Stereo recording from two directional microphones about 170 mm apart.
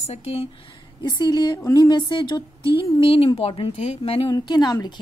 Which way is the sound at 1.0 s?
25° left (ahead or behind).